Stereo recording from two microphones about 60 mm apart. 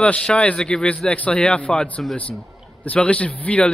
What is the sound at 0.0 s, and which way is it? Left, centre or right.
Speech, left.